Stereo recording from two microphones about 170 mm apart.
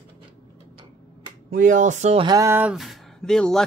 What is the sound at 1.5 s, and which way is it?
Speech, 50° right (ahead or behind).